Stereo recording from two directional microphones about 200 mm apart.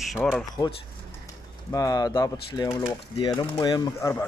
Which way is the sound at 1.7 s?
20° left (ahead or behind).